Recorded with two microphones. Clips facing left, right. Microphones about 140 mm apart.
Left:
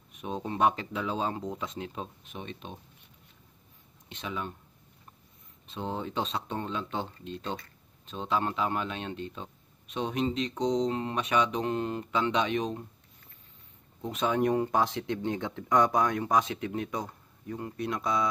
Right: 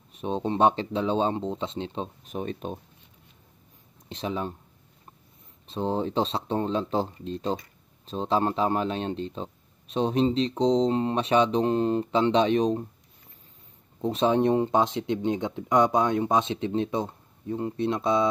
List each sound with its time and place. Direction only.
0.1 s speech: 30° right (ahead or behind)
2.2 s speech: 40° right (ahead or behind)
4.1 s speech: 35° right (ahead or behind)
5.7 s speech: 35° right (ahead or behind)
14.0 s speech: 30° right (ahead or behind)